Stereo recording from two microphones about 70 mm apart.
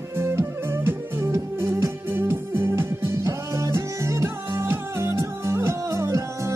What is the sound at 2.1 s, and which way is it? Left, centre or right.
Music, right.